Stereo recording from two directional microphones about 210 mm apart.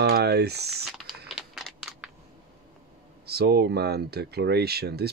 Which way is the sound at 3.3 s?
50° right (ahead or behind).